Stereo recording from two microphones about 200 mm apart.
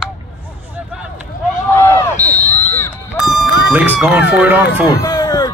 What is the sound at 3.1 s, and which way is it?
Fowl, centre (ahead or behind).